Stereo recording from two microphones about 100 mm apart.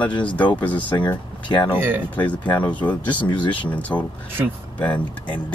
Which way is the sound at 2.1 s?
15° left (ahead or behind).